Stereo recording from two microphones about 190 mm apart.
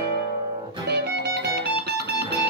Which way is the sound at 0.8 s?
60° right (ahead or behind).